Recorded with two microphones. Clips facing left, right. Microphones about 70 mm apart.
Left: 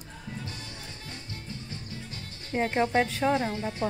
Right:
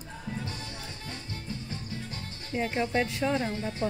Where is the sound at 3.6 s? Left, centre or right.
Centre.